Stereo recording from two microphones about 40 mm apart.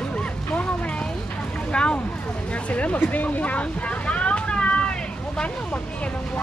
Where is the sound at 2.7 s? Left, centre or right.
Left.